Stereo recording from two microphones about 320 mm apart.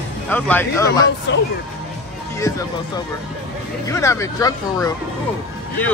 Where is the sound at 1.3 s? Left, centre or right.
Left.